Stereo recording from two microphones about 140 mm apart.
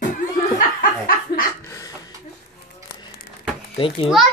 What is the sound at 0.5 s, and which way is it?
Chuckle, 90° left.